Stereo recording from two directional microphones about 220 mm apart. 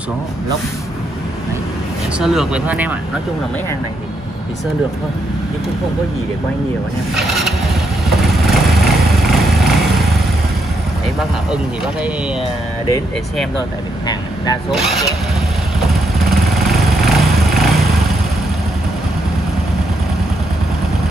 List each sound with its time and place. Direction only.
2.1 s speech: 5° right (ahead or behind)
7.2 s speech: centre (ahead or behind)
8.3 s vehicle: centre (ahead or behind)
11.1 s speech: 5° right (ahead or behind)
14.0 s speech: 15° left (ahead or behind)
14.7 s speech: centre (ahead or behind)
15.9 s vehicle: centre (ahead or behind)